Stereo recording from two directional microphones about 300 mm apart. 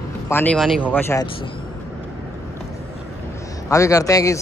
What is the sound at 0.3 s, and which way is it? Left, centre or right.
Speech, centre.